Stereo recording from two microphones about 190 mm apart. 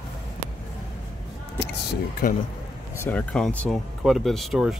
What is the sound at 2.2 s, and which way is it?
Speech, 45° left (ahead or behind).